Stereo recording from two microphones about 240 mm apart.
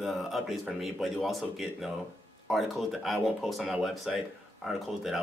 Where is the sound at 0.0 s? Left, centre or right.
Centre.